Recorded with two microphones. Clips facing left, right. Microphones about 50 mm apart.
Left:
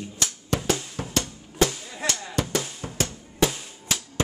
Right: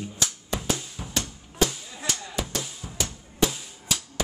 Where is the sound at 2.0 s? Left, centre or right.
Left.